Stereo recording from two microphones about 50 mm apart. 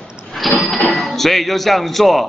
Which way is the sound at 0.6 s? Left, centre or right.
Centre.